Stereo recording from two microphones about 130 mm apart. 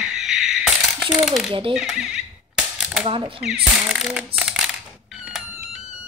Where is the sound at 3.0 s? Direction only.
45° right (ahead or behind).